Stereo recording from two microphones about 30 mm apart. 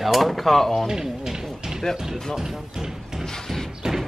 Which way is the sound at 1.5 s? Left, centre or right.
Centre.